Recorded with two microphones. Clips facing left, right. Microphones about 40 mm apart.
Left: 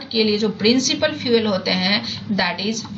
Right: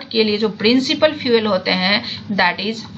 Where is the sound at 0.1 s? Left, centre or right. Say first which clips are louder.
Right 2 dB; right.